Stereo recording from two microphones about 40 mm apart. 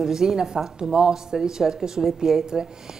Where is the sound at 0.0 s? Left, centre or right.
Centre.